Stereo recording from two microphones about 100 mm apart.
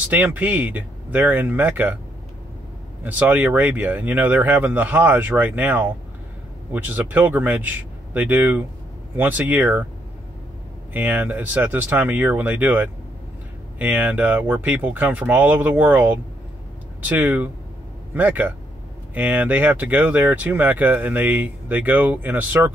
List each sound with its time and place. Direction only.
0.1 s speech: 20° right (ahead or behind)
3.0 s speech: 20° right (ahead or behind)
10.9 s speech: 20° right (ahead or behind)